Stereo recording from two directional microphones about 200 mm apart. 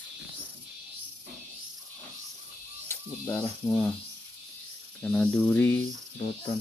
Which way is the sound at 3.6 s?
5° left (ahead or behind).